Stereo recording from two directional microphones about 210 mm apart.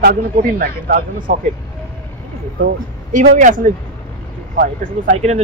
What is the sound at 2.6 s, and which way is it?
Speech, 40° right (ahead or behind).